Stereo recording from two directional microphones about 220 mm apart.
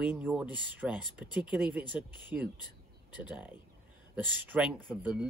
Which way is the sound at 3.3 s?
5° right (ahead or behind).